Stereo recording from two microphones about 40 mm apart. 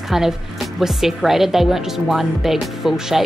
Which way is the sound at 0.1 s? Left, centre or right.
Centre.